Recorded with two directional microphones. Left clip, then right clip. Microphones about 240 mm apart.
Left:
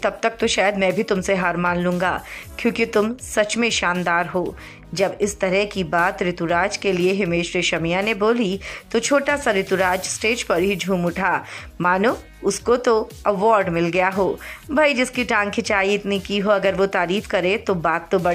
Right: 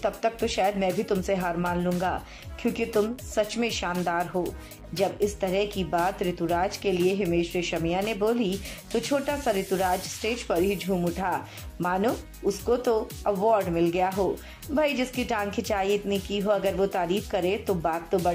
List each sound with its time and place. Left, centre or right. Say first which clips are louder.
0.0 s a woman's voice: left 6 dB; centre